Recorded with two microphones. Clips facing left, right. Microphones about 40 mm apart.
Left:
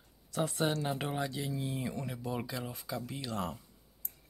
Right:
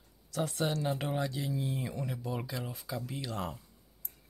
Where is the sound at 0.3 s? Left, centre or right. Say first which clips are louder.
Left 1 dB; centre.